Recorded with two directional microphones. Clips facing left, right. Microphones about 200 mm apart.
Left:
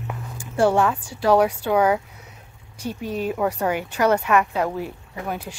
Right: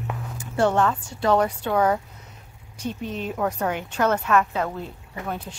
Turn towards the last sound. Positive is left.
turn(degrees=10)  # may be behind; listen again after turning